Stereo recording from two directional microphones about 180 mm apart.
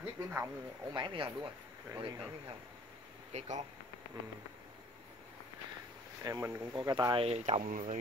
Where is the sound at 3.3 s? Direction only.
40° right (ahead or behind).